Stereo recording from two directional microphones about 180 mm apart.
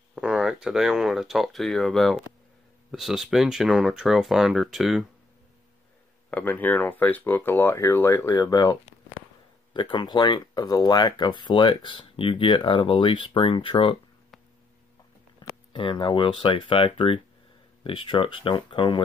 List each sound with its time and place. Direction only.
0.1 s speech: 5° right (ahead or behind)
6.3 s speech: 10° left (ahead or behind)
9.8 s speech: 25° left (ahead or behind)
15.7 s speech: 25° left (ahead or behind)